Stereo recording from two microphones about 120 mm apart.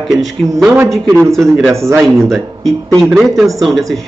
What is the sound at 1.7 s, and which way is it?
Speech, 25° right (ahead or behind).